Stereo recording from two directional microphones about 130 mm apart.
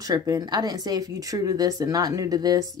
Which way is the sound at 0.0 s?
30° right (ahead or behind).